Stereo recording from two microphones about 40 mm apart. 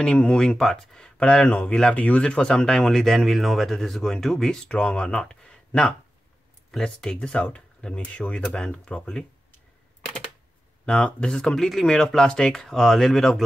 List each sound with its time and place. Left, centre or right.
0.0 s speech: left
0.4 s speech: centre
1.1 s speech: left
2.9 s speech: centre
4.6 s speech: left
6.8 s speech: left
7.2 s speech: left
8.2 s speech: centre
11.1 s speech: left; by 13.4 s centre